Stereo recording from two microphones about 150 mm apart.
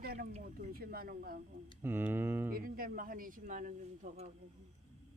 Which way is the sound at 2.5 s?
75° right (ahead or behind).